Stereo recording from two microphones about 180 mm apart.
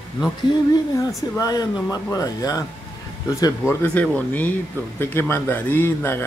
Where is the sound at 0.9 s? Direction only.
20° left (ahead or behind).